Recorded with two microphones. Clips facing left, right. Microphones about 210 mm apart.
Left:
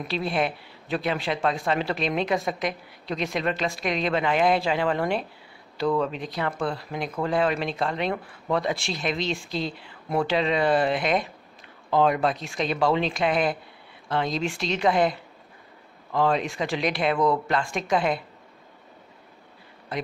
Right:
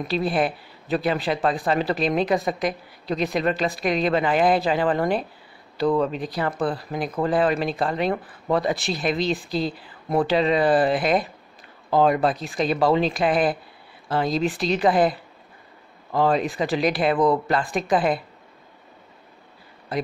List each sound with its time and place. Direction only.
0.0 s speech: centre (ahead or behind)
16.3 s speech: 5° right (ahead or behind)